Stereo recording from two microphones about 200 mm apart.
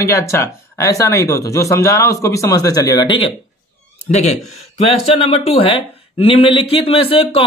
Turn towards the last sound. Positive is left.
turn(degrees=30)  # may be behind; listen again after turning